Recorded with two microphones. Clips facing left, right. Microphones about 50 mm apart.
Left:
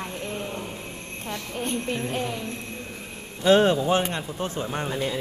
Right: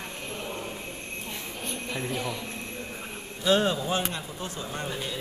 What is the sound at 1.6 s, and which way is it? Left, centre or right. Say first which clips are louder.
Speech: left 4 dB; left.